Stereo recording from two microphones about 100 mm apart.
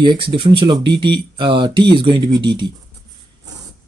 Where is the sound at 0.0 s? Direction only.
55° right (ahead or behind).